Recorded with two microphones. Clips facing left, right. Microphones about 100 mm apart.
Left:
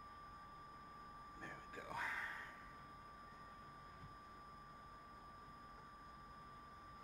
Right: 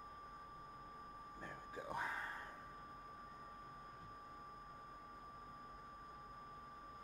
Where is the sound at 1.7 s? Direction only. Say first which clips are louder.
Right 3 dB; 25° right (ahead or behind).